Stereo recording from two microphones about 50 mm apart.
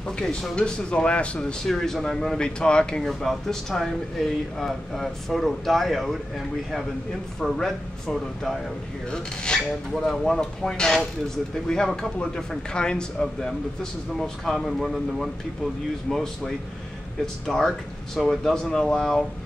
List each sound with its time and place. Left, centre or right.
0.0 s speech: centre
1.7 s speech: centre
7.3 s speech: centre
9.1 s speech: centre
9.6 s speech: centre
14.7 s speech: centre